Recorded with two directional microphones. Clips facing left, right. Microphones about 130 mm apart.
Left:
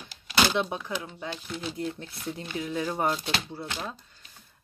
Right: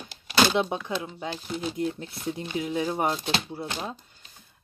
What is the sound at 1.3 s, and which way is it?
Speech, 35° right (ahead or behind).